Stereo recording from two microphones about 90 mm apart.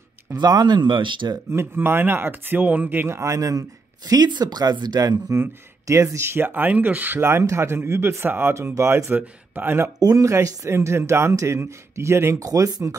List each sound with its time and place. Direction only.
0.4 s speech: 50° right (ahead or behind)
1.5 s speech: 25° right (ahead or behind)
3.2 s speech: 35° right (ahead or behind)
4.1 s speech: 50° right (ahead or behind)
5.3 s speech: 30° right (ahead or behind)
9.9 s speech: 45° right (ahead or behind)
12.4 s speech: 40° right (ahead or behind)